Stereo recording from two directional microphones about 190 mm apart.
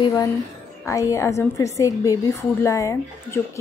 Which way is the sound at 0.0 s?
20° left (ahead or behind).